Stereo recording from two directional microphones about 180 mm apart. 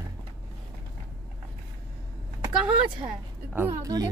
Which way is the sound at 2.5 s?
25° right (ahead or behind).